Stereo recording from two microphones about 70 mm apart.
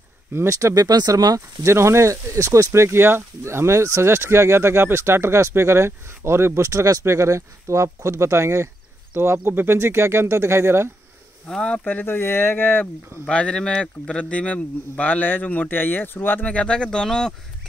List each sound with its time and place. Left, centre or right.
0.5 s speech: right
1.7 s speech: right
11.4 s speech: centre
11.8 s speech: left
13.2 s speech: centre
16.4 s speech: centre